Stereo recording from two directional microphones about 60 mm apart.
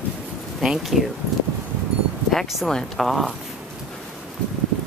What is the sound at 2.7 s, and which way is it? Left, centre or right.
Speech, centre.